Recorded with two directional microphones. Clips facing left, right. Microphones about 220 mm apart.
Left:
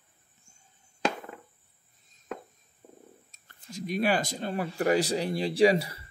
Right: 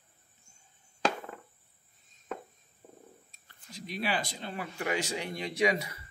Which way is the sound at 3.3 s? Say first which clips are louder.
Left 9 dB; 45° left (ahead or behind).